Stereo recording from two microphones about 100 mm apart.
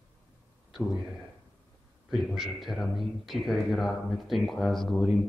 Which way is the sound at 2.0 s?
5° right (ahead or behind).